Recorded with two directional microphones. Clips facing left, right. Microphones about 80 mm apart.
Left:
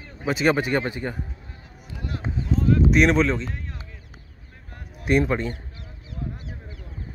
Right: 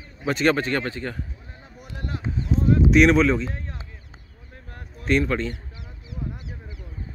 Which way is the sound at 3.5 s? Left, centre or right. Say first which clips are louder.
Right 1 dB; right.